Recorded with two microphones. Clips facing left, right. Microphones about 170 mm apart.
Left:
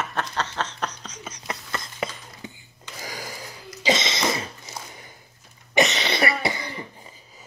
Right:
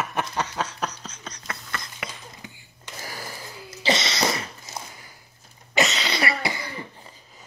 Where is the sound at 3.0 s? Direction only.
15° left (ahead or behind).